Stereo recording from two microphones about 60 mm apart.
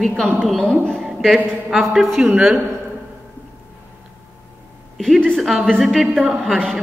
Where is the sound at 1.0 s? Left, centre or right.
Centre.